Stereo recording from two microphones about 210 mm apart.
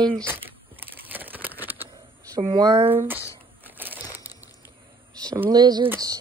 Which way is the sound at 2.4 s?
25° right (ahead or behind).